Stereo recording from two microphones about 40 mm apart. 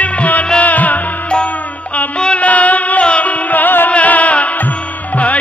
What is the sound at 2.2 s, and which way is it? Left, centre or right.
Music, left.